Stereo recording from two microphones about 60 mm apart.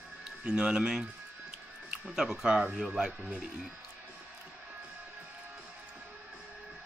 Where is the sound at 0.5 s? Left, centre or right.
Centre.